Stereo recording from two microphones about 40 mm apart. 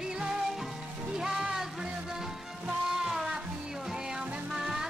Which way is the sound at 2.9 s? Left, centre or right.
Centre.